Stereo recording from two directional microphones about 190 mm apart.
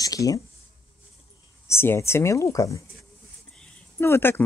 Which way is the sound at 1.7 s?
15° left (ahead or behind).